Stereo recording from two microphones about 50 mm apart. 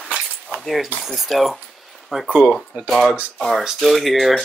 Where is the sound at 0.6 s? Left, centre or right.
Centre.